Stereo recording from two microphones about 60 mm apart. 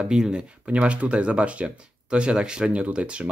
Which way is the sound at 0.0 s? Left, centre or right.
Centre.